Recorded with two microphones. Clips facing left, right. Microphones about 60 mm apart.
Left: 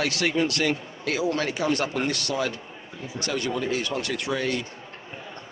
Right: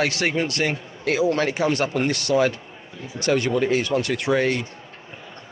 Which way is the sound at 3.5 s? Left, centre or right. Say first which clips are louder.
Right 6 dB; right.